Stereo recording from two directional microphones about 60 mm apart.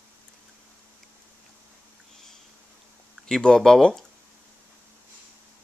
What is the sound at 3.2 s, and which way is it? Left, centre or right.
Speech, centre.